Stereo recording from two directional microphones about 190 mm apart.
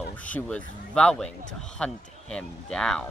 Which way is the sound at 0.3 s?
5° left (ahead or behind).